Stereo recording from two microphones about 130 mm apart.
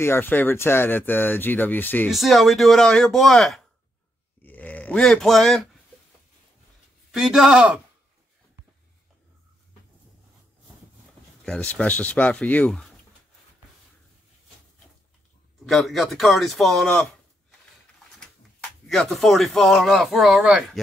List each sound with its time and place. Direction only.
0.0 s speech: 15° left (ahead or behind)
2.0 s speech: centre (ahead or behind)
4.4 s grunt: 10° left (ahead or behind)
7.1 s speech: centre (ahead or behind)
11.4 s speech: 10° left (ahead or behind)
15.6 s speech: centre (ahead or behind)